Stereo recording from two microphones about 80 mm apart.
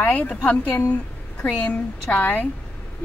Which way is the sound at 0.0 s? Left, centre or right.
Centre.